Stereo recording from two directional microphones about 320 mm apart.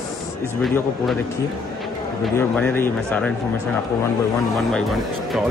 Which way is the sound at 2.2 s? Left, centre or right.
Centre.